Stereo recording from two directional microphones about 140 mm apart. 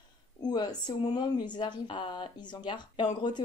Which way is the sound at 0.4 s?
30° left (ahead or behind).